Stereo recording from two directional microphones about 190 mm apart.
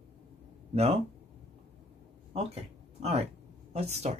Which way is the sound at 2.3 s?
35° right (ahead or behind).